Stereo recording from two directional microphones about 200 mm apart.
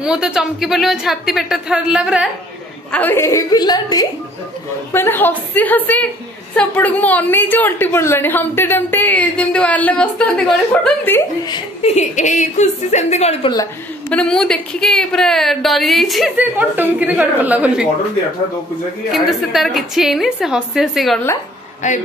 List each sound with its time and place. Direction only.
0.0 s a woman's voice: 5° right (ahead or behind)
2.9 s a woman's voice: 10° left (ahead or behind)
11.4 s a woman's voice: 25° left (ahead or behind)
13.5 s a woman's voice: 20° left (ahead or behind)
14.1 s a woman's voice: 5° left (ahead or behind)
19.1 s a woman's voice: centre (ahead or behind)